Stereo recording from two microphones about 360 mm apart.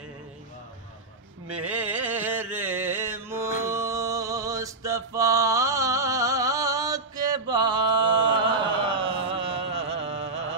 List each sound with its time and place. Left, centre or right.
1.5 s music: centre
8.5 s a sound: centre
9.8 s music: centre